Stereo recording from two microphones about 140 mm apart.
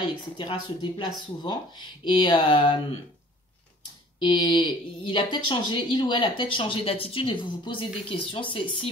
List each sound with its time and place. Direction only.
0.0 s speech: 35° left (ahead or behind)
4.2 s speech: 30° left (ahead or behind)